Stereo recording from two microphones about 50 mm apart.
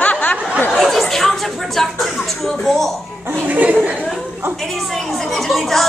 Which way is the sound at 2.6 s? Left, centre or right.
Centre.